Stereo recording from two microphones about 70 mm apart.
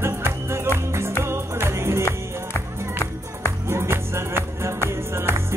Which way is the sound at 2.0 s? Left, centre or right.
Left.